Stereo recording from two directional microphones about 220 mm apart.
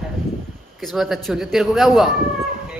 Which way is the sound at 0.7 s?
Centre (ahead or behind).